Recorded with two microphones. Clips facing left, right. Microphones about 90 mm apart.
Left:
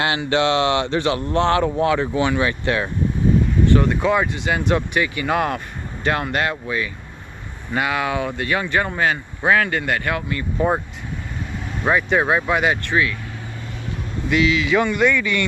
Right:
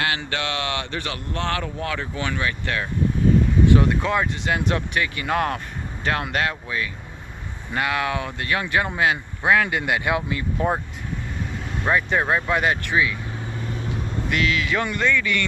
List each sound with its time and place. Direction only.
0.3 s speech: 25° left (ahead or behind)
3.6 s a sound: 10° right (ahead or behind)
3.9 s speech: 5° left (ahead or behind); by 10.4 s 15° right (ahead or behind)
11.8 s speech: 5° left (ahead or behind)
12.8 s speech: 10° right (ahead or behind)
14.3 s speech: 5° left (ahead or behind)